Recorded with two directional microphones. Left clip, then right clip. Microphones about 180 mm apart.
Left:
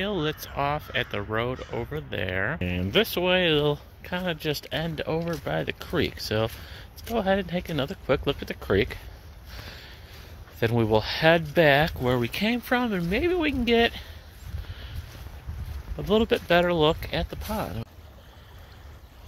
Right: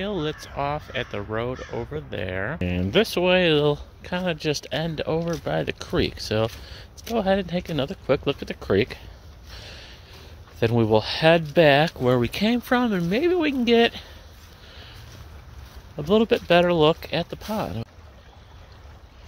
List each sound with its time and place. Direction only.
0.0 s speech: 10° right (ahead or behind)
2.6 s speech: 30° right (ahead or behind)
9.5 s a sound: 30° right (ahead or behind)
10.6 s speech: 30° right (ahead or behind)
16.0 s speech: 35° right (ahead or behind)